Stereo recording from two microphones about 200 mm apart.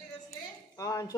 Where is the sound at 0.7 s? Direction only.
15° left (ahead or behind).